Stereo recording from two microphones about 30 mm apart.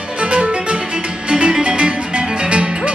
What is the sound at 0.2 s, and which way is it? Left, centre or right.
Music, right.